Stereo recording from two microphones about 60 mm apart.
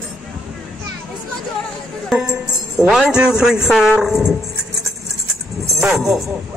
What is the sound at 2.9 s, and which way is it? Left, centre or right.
A man's voice, centre.